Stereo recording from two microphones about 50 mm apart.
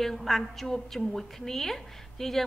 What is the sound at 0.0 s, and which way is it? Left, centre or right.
A woman's voice, centre.